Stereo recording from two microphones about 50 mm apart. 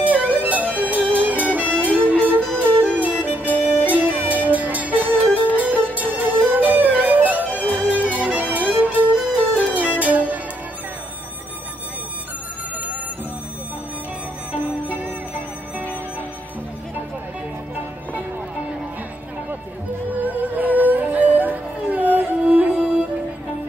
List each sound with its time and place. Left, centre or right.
0.0 s music: right
14.5 s music: right
20.2 s music: right